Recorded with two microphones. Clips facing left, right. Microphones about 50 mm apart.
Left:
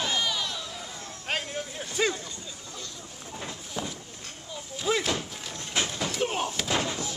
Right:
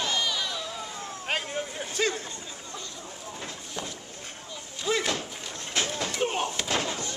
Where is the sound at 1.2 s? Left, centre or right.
Centre.